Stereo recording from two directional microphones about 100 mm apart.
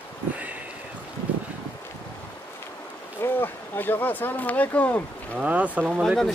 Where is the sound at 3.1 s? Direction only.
20° left (ahead or behind).